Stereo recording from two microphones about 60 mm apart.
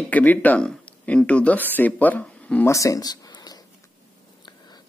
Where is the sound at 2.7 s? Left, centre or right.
Left.